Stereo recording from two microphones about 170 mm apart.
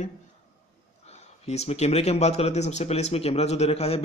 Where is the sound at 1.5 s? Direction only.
40° left (ahead or behind).